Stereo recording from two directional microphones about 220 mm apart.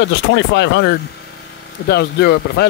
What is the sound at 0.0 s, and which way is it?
Speech, 55° left (ahead or behind).